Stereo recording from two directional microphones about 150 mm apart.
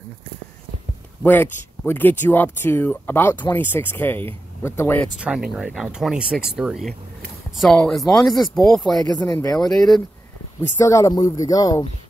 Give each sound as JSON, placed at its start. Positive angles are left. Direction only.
{"t": 1.2, "sound": "speech", "side_deg": 15}
{"t": 5.2, "sound": "speech", "side_deg": -5}
{"t": 9.0, "sound": "speech", "side_deg": 25}
{"t": 9.6, "sound": "speech", "side_deg": 5}
{"t": 10.8, "sound": "speech", "side_deg": 20}